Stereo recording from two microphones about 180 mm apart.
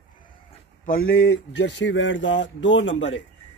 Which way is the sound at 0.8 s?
55° left (ahead or behind).